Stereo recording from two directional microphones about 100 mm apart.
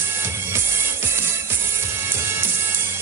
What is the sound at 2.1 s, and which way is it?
Music, 25° right (ahead or behind).